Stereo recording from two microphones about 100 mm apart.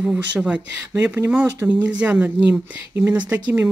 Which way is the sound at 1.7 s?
15° right (ahead or behind).